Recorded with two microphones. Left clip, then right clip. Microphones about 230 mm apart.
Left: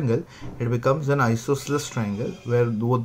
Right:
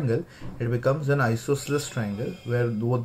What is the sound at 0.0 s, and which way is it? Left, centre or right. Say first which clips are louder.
Speech: left 2 dB; left.